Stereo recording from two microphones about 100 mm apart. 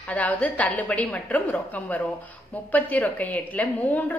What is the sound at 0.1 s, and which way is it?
A woman's voice, 15° left (ahead or behind).